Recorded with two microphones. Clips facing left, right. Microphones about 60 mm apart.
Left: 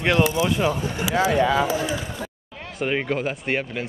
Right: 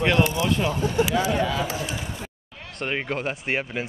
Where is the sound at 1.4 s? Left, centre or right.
Left.